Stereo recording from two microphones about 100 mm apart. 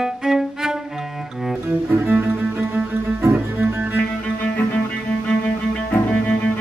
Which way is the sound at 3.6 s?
20° right (ahead or behind).